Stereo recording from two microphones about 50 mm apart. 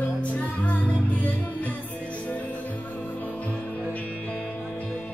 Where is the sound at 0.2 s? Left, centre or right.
Left.